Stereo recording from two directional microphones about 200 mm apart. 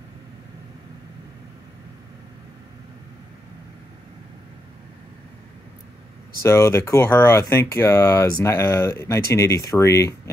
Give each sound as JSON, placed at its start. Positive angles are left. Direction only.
{"t": 6.4, "sound": "speech", "side_deg": 15}